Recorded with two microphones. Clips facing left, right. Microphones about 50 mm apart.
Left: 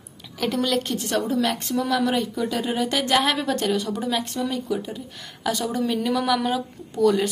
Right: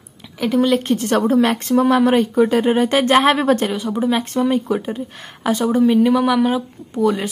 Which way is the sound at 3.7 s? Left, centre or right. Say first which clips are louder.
Right 5 dB; right.